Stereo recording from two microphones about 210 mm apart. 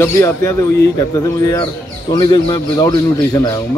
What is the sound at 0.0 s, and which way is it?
A man's voice, 15° left (ahead or behind).